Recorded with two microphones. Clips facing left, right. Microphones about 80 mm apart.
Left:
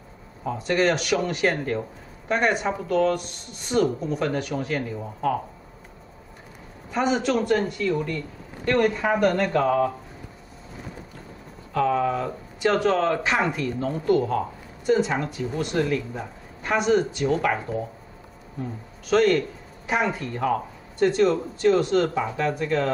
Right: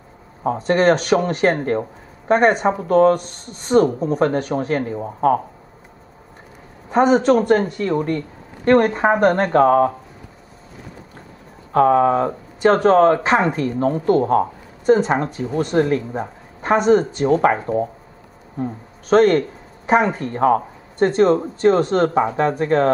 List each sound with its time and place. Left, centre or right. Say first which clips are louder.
0.4 s speech: right 6 dB; right
6.9 s speech: right 9 dB; right
11.7 s speech: right 8 dB; right